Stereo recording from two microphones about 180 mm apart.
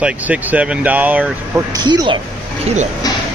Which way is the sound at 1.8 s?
25° right (ahead or behind).